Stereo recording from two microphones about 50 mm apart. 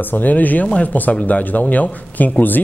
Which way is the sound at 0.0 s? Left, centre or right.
Left.